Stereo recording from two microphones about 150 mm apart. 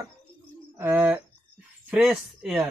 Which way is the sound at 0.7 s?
10° right (ahead or behind).